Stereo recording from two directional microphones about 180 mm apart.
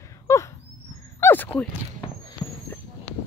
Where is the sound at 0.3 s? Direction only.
15° left (ahead or behind).